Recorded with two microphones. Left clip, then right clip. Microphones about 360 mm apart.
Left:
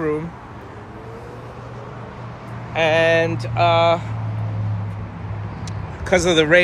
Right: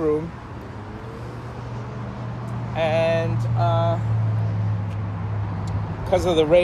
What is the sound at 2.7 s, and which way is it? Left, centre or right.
Speech, left.